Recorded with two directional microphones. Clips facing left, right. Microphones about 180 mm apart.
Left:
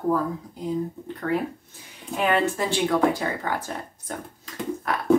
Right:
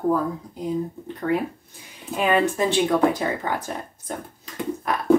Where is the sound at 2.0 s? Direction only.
10° right (ahead or behind).